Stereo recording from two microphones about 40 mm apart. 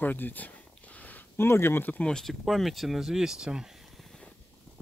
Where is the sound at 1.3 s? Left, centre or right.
Left.